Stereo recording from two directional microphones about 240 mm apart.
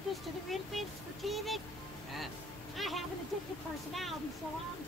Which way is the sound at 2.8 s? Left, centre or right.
Centre.